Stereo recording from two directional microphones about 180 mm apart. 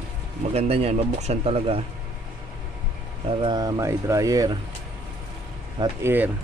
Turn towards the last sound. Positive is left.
turn(degrees=-10)  # may be behind; listen again after turning